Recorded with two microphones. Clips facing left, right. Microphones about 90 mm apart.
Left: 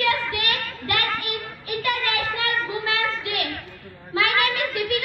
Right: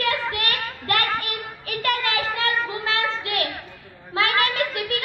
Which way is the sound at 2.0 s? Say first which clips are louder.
Right 1 dB; 20° right (ahead or behind).